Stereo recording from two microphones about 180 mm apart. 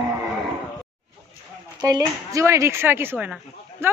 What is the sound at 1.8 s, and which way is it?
A man's voice, 20° right (ahead or behind).